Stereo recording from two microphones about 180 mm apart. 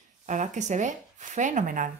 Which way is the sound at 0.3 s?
40° right (ahead or behind).